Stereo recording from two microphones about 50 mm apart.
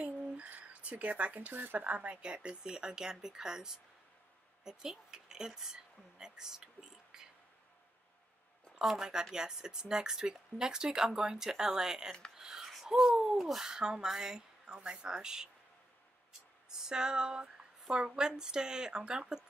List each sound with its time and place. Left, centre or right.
0.0 s a sound: right
1.5 s speech: right; by 7.2 s centre
8.8 s speech: centre
12.4 s a sound: centre
13.5 s speech: centre
16.6 s speech: centre